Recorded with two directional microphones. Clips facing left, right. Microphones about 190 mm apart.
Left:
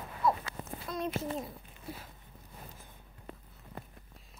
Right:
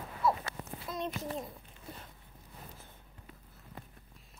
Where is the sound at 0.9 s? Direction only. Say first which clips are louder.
Left 1 dB; 5° right (ahead or behind).